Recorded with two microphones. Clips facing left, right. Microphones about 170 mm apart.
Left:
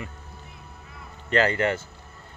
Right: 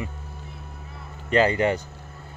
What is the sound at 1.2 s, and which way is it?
Speech, 15° right (ahead or behind).